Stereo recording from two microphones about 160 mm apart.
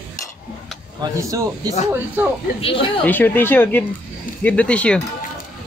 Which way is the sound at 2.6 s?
35° left (ahead or behind).